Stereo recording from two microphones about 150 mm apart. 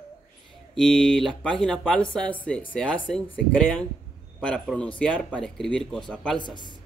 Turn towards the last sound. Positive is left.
turn(degrees=30)  # may be behind; listen again after turning